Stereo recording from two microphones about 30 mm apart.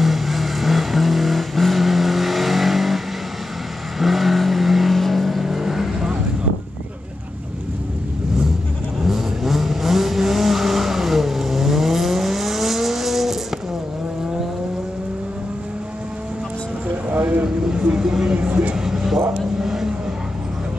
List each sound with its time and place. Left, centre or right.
0.0 s vehicle: centre
4.0 s vehicle: centre
5.4 s vehicle: centre
9.0 s vehicle: centre
17.1 s vehicle: right
17.9 s a sound: centre
18.3 s a sound: right
18.8 s a sound: centre
19.3 s vehicle: centre